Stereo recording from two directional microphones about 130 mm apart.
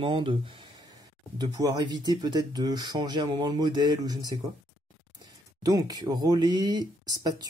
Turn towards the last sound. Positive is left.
turn(degrees=-30)  # may be behind; listen again after turning